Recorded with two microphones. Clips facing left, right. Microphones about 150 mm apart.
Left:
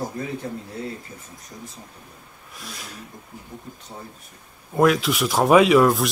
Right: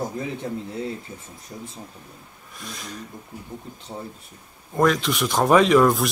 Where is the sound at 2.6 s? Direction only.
5° left (ahead or behind).